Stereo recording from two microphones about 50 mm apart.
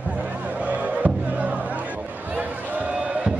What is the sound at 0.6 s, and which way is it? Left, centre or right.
Music, right.